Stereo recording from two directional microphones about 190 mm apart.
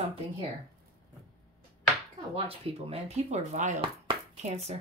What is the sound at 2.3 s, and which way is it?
Speech, 30° right (ahead or behind).